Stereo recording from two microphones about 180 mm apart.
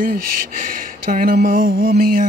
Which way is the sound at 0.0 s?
50° right (ahead or behind).